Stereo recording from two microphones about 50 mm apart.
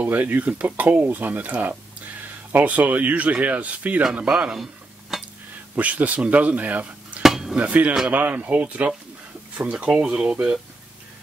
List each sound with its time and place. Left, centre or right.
0.0 s speech: right
5.1 s a sound: centre
5.8 s speech: right
7.2 s a sound: centre
7.5 s speech: right
10.0 s speech: centre